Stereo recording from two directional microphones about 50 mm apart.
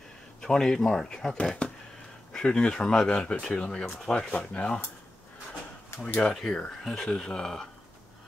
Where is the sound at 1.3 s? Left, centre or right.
Left.